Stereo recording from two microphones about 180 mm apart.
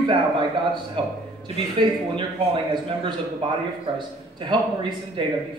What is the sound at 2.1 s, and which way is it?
Speech, 25° right (ahead or behind).